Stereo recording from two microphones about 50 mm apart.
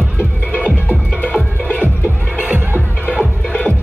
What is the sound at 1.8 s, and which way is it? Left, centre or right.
Music, right.